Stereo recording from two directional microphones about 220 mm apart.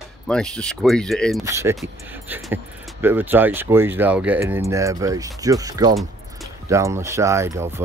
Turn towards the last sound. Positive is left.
turn(degrees=-10)  # may be behind; listen again after turning